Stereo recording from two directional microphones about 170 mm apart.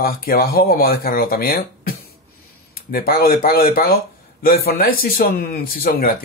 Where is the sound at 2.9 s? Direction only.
60° left (ahead or behind).